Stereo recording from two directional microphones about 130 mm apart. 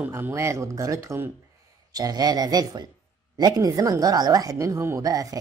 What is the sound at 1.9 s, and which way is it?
Speech, 30° right (ahead or behind).